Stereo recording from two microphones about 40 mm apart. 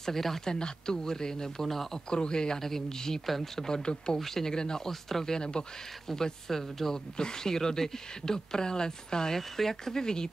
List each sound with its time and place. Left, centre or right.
0.0 s speech: centre
2.0 s speech: left
4.2 s speech: centre